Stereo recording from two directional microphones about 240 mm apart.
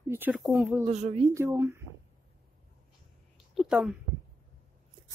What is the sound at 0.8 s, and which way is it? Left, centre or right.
Speech, right.